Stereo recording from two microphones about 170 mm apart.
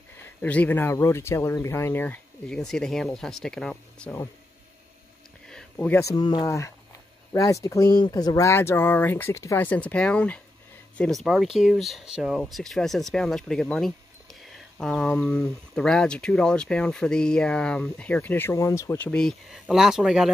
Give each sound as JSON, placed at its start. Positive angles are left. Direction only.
{"t": 0.2, "sound": "speech", "side_deg": 10}
{"t": 5.5, "sound": "speech", "side_deg": 5}
{"t": 19.0, "sound": "speech", "side_deg": 5}